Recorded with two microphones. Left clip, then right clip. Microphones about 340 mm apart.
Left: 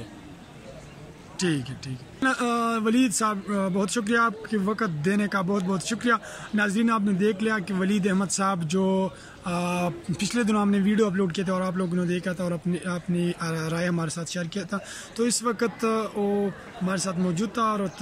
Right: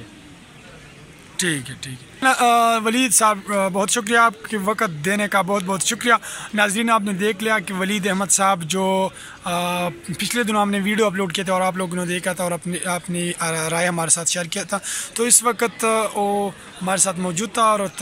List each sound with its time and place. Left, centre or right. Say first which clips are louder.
1.3 s a man's voice: right 5 dB; centre